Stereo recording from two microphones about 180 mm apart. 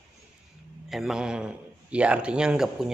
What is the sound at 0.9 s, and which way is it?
Speech, centre (ahead or behind).